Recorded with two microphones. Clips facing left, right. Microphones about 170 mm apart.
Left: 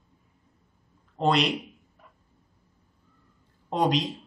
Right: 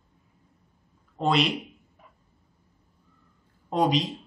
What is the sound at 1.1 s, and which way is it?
Speech, centre (ahead or behind).